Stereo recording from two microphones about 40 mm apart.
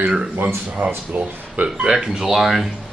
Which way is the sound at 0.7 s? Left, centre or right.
Right.